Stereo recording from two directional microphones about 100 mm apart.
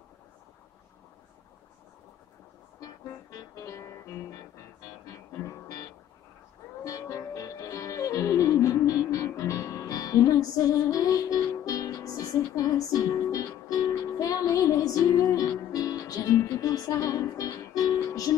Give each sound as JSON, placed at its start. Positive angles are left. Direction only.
{"t": 2.8, "sound": "music", "side_deg": 35}